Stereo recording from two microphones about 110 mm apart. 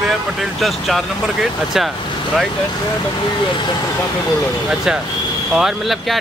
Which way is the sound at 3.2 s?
45° left (ahead or behind).